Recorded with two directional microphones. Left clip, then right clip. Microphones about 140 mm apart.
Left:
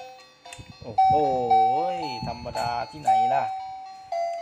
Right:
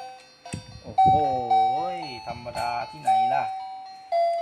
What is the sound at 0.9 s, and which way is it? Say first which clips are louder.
Speech: right 1 dB; 10° right (ahead or behind).